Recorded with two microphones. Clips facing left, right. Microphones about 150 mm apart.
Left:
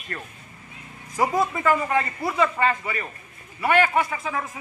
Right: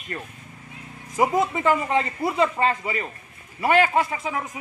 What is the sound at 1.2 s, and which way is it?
A man's voice, 20° right (ahead or behind).